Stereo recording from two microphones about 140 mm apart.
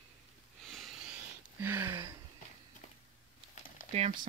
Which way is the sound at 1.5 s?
15° right (ahead or behind).